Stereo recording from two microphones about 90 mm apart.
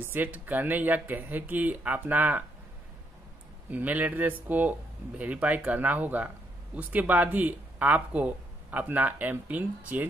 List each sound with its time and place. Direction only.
0.0 s speech: 20° right (ahead or behind)
3.7 s speech: 20° right (ahead or behind)